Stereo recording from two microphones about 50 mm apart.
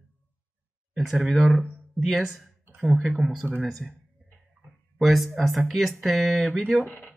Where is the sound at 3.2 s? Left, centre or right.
Centre.